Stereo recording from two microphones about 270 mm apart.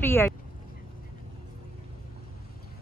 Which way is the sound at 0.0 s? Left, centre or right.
Centre.